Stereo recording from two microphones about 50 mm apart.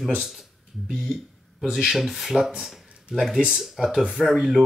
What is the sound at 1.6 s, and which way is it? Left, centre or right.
Speech, centre.